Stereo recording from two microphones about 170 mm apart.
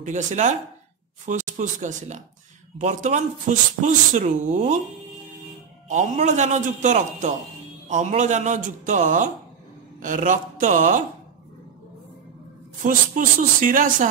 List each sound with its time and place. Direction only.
0.0 s speech: 45° right (ahead or behind)
5.9 s speech: 45° right (ahead or behind)
12.8 s speech: 50° right (ahead or behind)